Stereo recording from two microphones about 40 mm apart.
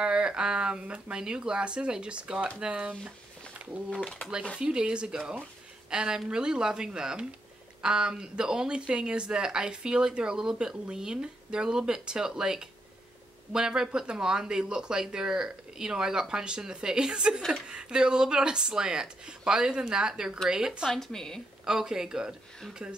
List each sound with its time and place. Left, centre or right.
0.0 s a sound: right
1.1 s speech: centre
4.6 s speech: right
20.9 s a woman's voice: centre
21.6 s speech: centre